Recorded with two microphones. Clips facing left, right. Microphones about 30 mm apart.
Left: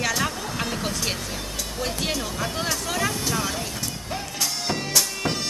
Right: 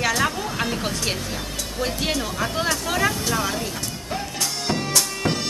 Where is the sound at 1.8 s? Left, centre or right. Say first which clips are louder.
Right 3 dB; centre.